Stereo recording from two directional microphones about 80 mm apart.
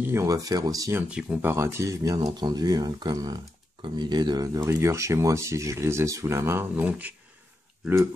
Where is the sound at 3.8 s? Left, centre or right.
Right.